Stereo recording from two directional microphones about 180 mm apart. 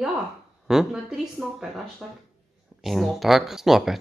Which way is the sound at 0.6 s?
Centre (ahead or behind).